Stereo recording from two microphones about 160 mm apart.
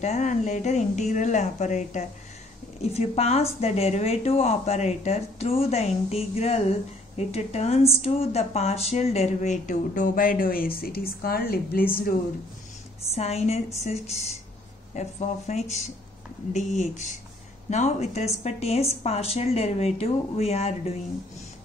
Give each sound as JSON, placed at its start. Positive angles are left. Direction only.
{"t": 0.0, "sound": "a woman's voice", "side_deg": 45}
{"t": 13.1, "sound": "a woman's voice", "side_deg": 40}